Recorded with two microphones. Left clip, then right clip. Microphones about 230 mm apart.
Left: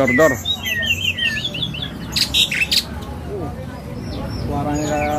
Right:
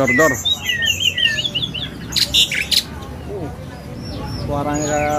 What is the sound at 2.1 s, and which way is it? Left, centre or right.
Bird, centre.